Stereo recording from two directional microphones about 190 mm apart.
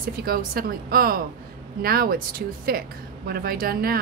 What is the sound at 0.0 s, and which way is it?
A woman's voice, 50° right (ahead or behind).